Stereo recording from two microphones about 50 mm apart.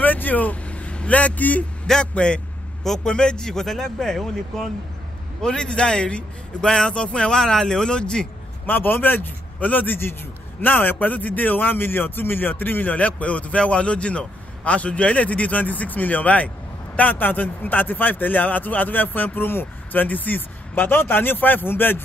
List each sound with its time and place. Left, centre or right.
0.0 s vehicle: left
1.9 s speech: centre
8.6 s a man's voice: left